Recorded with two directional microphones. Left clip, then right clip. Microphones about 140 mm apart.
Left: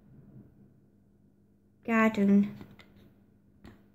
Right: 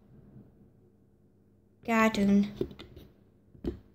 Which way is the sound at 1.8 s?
25° left (ahead or behind).